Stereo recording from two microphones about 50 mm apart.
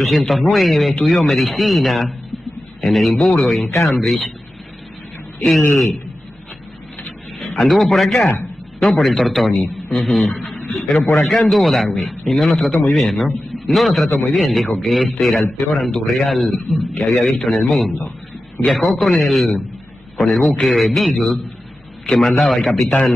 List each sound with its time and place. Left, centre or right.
0.2 s a man's voice: centre
7.6 s a man's voice: centre
22.0 s a man's voice: centre
22.3 s a man's voice: centre